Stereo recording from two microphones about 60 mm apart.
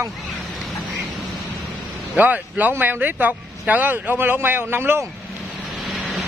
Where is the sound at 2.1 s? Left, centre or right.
Right.